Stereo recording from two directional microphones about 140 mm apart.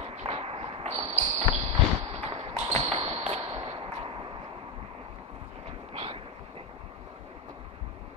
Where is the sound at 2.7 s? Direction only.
40° right (ahead or behind).